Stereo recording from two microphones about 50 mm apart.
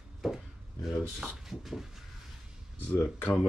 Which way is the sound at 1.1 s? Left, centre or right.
Centre.